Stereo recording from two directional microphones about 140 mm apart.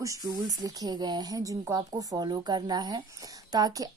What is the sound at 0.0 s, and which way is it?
A woman's voice, 25° right (ahead or behind).